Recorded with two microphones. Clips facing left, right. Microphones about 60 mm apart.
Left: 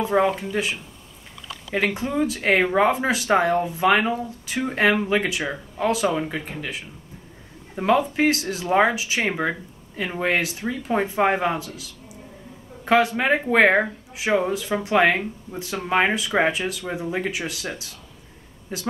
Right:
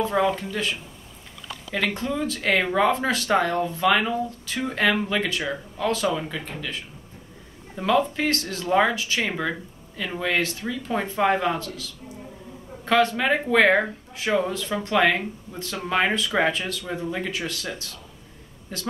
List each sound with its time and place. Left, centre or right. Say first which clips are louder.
0.0 s speech: left 2 dB; left
2.0 s speech: left 3 dB; centre
7.7 s speech: left 2 dB; left
9.4 s speech: left 3 dB; left
10.4 s speech: left 1 dB; centre